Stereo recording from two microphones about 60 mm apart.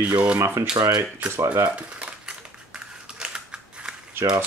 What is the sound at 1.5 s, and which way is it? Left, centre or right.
Dishes, right.